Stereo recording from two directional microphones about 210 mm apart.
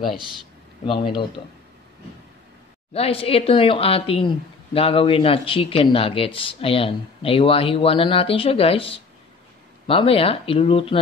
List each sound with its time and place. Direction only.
2.9 s speech: 30° left (ahead or behind)